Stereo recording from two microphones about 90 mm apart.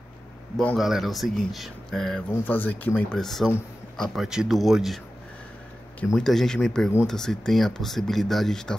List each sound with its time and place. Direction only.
0.7 s speech: 5° right (ahead or behind)
2.3 s speech: 20° left (ahead or behind)
3.2 s speech: 5° left (ahead or behind)
6.1 s speech: 5° left (ahead or behind)